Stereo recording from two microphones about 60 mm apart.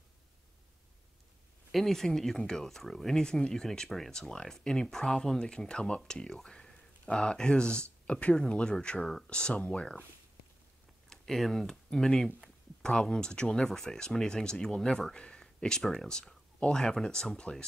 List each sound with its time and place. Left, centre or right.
1.7 s speech: centre
11.1 s speech: centre